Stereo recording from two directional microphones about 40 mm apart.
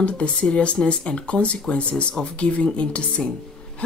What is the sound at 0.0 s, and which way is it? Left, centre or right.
Speech, left.